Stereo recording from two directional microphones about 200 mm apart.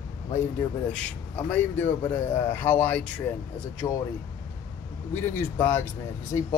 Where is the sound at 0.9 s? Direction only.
5° left (ahead or behind).